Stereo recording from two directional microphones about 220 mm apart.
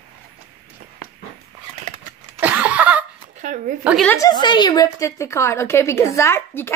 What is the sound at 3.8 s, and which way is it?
Speech, centre (ahead or behind).